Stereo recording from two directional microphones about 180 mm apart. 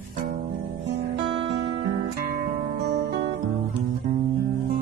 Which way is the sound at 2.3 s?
65° right (ahead or behind).